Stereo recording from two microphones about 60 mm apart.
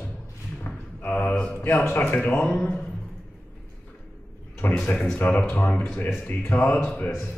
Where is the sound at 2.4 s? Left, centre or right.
Left.